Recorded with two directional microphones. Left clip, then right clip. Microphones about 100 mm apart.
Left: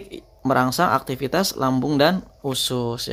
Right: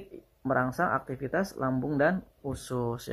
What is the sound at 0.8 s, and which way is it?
Speech, 45° left (ahead or behind).